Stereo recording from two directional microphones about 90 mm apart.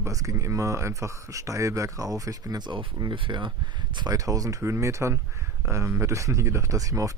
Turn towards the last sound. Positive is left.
turn(degrees=-40)  # may be behind; listen again after turning